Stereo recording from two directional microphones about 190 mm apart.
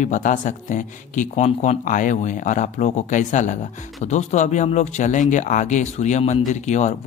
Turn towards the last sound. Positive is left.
turn(degrees=40)  # may be behind; listen again after turning